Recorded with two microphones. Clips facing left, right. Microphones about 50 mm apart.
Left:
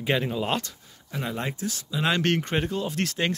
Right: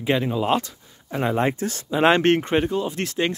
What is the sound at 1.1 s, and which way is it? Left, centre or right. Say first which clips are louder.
Speech: right 9 dB; right.